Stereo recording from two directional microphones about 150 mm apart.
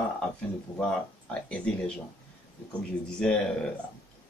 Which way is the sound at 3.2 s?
5° left (ahead or behind).